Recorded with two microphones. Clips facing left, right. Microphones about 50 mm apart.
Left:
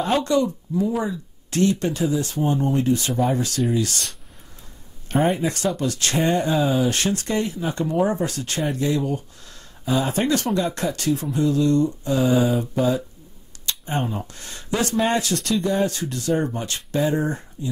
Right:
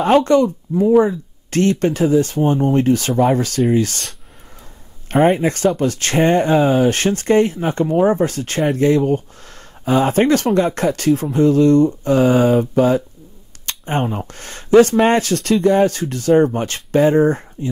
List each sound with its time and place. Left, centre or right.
0.0 s speech: right
2.9 s speech: right